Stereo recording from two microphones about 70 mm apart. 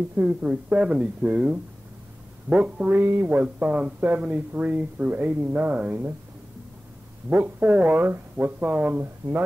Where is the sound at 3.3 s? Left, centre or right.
Centre.